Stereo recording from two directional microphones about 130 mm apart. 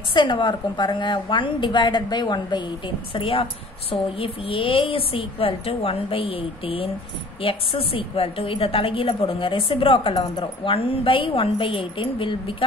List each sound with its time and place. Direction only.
0.1 s a woman's voice: 40° left (ahead or behind)